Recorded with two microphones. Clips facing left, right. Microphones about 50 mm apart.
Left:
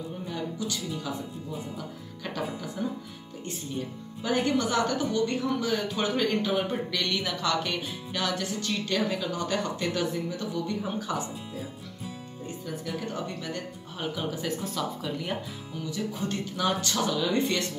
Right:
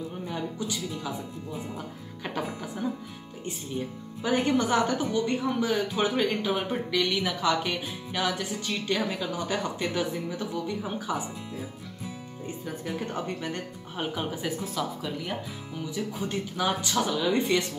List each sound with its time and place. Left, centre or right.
0.3 s speech: centre
2.2 s speech: centre
4.2 s speech: right
12.6 s speech: right
14.4 s speech: centre
15.9 s speech: centre